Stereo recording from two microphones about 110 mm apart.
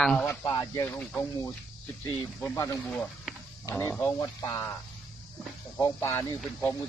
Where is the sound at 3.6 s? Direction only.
20° left (ahead or behind).